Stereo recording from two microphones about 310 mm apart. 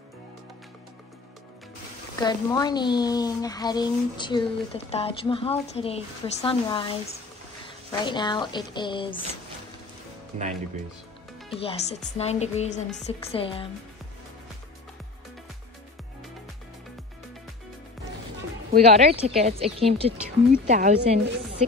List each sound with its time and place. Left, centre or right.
2.1 s speech: centre
11.5 s speech: centre
18.7 s speech: right